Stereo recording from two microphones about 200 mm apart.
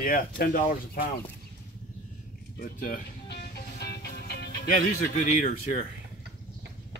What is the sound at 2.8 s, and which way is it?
Music, 45° left (ahead or behind).